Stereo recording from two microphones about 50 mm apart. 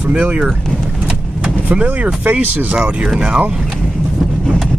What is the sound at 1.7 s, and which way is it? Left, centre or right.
Speech, right.